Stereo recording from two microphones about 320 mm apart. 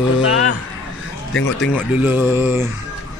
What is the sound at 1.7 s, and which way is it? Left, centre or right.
Mantra, centre.